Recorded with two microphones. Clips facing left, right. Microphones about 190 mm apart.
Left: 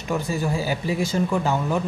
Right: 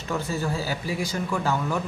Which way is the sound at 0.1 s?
15° left (ahead or behind).